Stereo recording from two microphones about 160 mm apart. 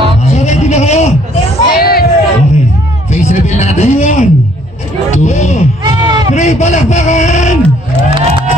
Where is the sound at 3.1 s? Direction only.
45° left (ahead or behind).